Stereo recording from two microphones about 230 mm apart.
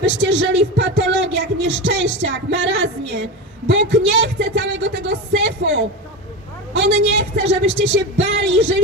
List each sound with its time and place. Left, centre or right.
0.2 s music: right